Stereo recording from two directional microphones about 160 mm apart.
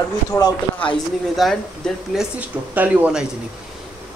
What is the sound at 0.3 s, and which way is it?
Speech, 25° left (ahead or behind).